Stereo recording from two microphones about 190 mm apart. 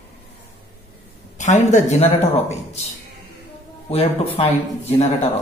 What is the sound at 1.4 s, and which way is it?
Speech, 40° left (ahead or behind).